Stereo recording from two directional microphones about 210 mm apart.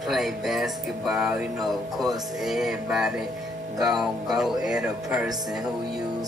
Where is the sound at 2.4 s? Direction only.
Centre (ahead or behind).